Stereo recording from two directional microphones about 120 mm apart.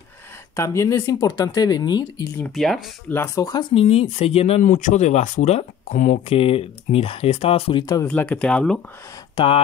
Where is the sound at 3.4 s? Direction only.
35° left (ahead or behind).